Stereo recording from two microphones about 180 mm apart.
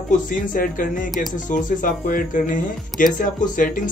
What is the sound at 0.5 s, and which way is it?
Speech, 50° left (ahead or behind).